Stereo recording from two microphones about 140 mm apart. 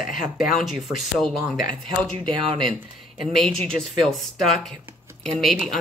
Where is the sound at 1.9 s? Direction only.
35° right (ahead or behind).